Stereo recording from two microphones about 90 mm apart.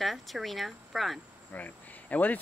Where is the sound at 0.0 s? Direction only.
Centre (ahead or behind).